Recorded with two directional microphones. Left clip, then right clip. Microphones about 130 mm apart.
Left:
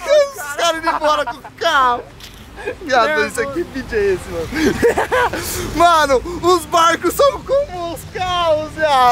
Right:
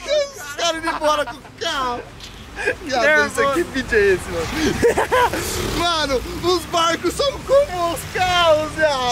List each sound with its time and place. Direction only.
0.0 s a sound: 25° left (ahead or behind)
1.6 s speech: 25° left (ahead or behind)
3.1 s speech: 15° left (ahead or behind)
3.7 s speech: 5° left (ahead or behind)
4.6 s speech: 25° left (ahead or behind)
4.8 s speech: 15° left (ahead or behind)
5.8 s speech: 30° left (ahead or behind)
7.4 s speech: 5° left (ahead or behind)